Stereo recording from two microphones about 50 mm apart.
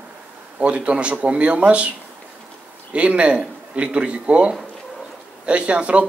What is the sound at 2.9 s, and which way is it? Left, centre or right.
A man's voice, right.